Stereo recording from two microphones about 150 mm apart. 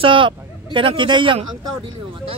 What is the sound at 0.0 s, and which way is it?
Speech, 35° right (ahead or behind).